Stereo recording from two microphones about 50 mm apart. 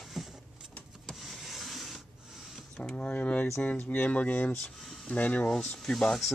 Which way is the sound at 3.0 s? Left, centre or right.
Left.